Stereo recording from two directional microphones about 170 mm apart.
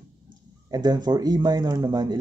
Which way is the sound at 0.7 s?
25° right (ahead or behind).